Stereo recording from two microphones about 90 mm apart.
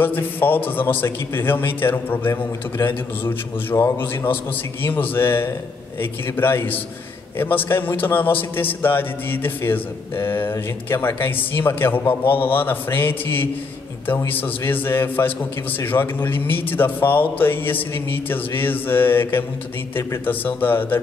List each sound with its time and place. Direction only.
0.0 s a man's voice: 20° left (ahead or behind)